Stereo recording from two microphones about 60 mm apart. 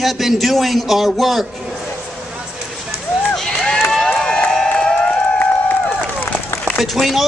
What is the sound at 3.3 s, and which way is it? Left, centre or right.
Run, centre.